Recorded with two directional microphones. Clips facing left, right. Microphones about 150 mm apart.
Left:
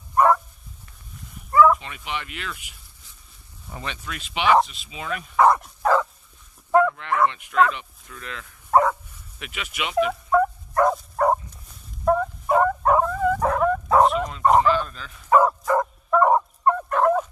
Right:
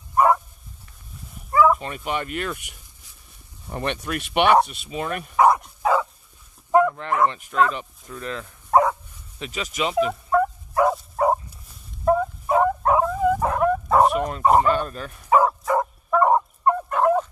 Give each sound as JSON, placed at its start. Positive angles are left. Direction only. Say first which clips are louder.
{"t": 0.1, "sound": "dog", "louder": "even", "side_deg": -10}
{"t": 1.8, "sound": "speech", "louder": "right 5 dB", "side_deg": -45}
{"t": 5.3, "sound": "dog", "louder": "even", "side_deg": -15}
{"t": 6.7, "sound": "a sound", "louder": "right 1 dB", "side_deg": -20}
{"t": 7.2, "sound": "speech", "louder": "left 3 dB", "side_deg": -40}
{"t": 8.6, "sound": "dog", "louder": "even", "side_deg": -20}
{"t": 9.4, "sound": "speech", "louder": "right 5 dB", "side_deg": -35}
{"t": 10.3, "sound": "dog", "louder": "left 1 dB", "side_deg": -5}
{"t": 14.1, "sound": "dog", "louder": "right 2 dB", "side_deg": -55}
{"t": 14.4, "sound": "bow-wow", "louder": "even", "side_deg": -5}
{"t": 14.7, "sound": "speech", "louder": "right 1 dB", "side_deg": -50}
{"t": 15.2, "sound": "fowl", "louder": "left 1 dB", "side_deg": -5}